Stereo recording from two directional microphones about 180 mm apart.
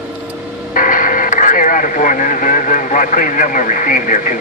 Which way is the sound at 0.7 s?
50° left (ahead or behind).